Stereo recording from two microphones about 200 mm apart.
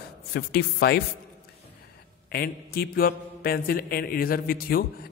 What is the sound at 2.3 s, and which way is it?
Speech, 50° left (ahead or behind).